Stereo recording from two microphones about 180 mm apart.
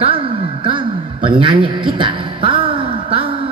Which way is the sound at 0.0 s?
30° right (ahead or behind).